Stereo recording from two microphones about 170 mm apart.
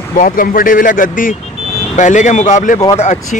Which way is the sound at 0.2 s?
55° left (ahead or behind).